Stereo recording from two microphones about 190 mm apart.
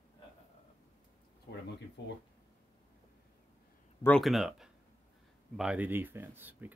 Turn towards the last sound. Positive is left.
turn(degrees=-10)  # may be behind; listen again after turning